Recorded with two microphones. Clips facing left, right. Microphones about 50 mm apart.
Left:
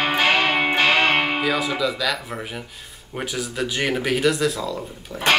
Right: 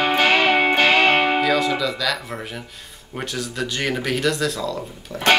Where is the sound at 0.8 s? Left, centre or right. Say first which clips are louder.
Right 2 dB; centre.